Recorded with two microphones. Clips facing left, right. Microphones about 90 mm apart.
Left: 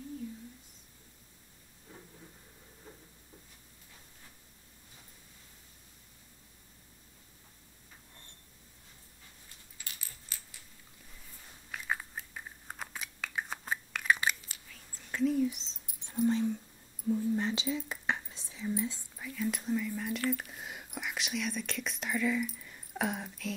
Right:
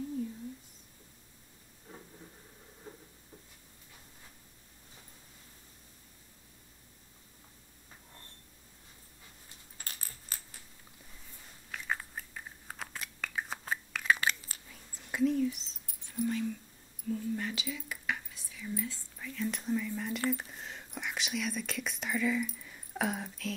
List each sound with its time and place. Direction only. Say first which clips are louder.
9.8 s coin: right 2 dB; 45° right (ahead or behind)
11.7 s biting: even; 5° left (ahead or behind)
14.7 s whispering: right 1 dB; 15° right (ahead or behind)
15.4 s rodents: even; 20° left (ahead or behind)
17.1 s whispering: left 4 dB; 20° left (ahead or behind); by 23.5 s centre (ahead or behind)